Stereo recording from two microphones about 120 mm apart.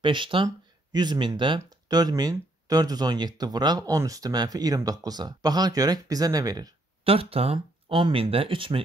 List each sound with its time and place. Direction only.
0.0 s speech: 45° right (ahead or behind)
7.1 s speech: 55° right (ahead or behind)